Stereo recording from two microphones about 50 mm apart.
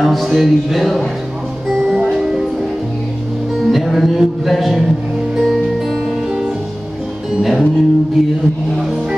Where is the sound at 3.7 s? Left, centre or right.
Centre.